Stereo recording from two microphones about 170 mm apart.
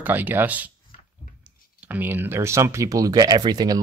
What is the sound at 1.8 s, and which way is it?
Speech, 10° right (ahead or behind).